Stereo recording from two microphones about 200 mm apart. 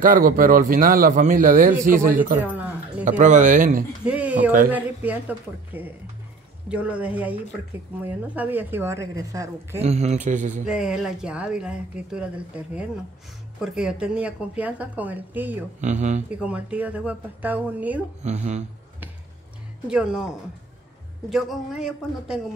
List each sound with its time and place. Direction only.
0.0 s a man's voice: 45° right (ahead or behind)
2.3 s keys jangling: 10° right (ahead or behind)
3.1 s speech: 40° right (ahead or behind)
4.0 s speech: 5° right (ahead or behind)
9.8 s speech: 35° right (ahead or behind)
10.6 s speech: 5° right (ahead or behind)
13.6 s speech: 5° right (ahead or behind)
15.8 s speech: 35° right (ahead or behind)
16.3 s speech: 5° right (ahead or behind)
18.2 s speech: 35° right (ahead or behind)
19.9 s speech: 5° right (ahead or behind)